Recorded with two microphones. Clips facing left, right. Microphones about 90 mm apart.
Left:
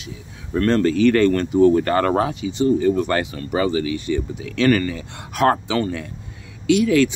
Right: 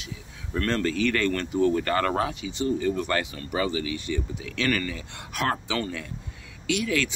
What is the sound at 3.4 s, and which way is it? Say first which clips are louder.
Speech: left 7 dB; 45° left (ahead or behind).